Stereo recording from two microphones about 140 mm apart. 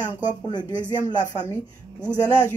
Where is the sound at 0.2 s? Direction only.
30° left (ahead or behind).